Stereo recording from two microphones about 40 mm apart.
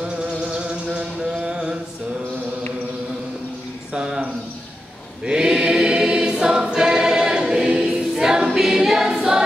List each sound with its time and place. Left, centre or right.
0.5 s music: right
1.2 s mantra: centre
3.9 s a sound: centre
5.2 s choir: centre